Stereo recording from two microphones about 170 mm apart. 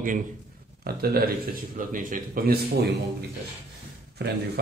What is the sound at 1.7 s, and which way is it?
A man's voice, 50° right (ahead or behind).